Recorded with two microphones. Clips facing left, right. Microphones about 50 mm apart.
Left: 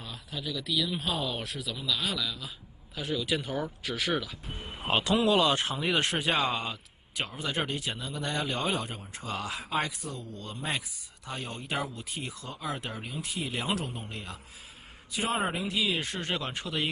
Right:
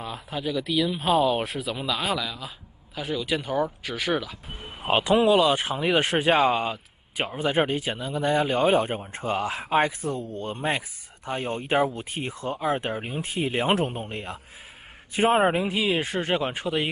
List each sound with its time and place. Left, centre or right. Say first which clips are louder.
0.0 s a man's voice: right 8 dB; centre
4.6 s vehicle: right 5 dB; centre
5.2 s speech: right 5 dB; centre
8.6 s speech: right 10 dB; right
15.7 s speech: right 6 dB; centre